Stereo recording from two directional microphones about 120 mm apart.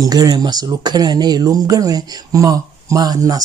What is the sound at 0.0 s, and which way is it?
Speech, 30° right (ahead or behind).